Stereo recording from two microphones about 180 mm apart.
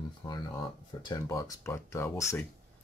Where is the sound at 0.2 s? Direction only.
20° left (ahead or behind).